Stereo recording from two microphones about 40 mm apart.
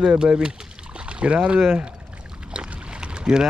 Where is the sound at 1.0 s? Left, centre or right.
Right.